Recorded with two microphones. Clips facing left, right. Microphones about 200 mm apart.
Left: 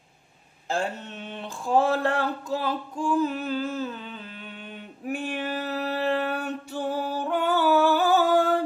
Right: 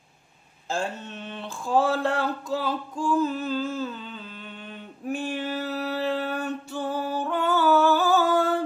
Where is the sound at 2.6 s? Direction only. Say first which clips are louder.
Even; 15° left (ahead or behind).